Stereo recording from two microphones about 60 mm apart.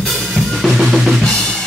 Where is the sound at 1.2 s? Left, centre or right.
Centre.